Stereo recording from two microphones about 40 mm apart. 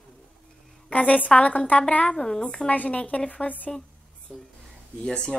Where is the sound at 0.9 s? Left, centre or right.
Left.